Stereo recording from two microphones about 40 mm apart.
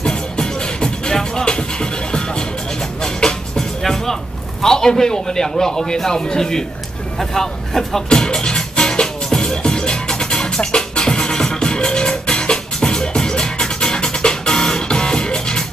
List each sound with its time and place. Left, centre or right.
0.0 s music: left
4.6 s a man's voice: centre
8.1 s music: centre